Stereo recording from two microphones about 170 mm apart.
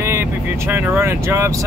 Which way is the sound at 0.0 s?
15° right (ahead or behind).